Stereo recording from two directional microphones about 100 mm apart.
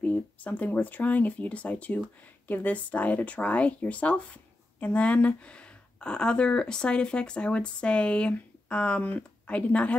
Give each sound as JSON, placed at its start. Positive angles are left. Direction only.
{"t": 0.0, "sound": "speech", "side_deg": 15}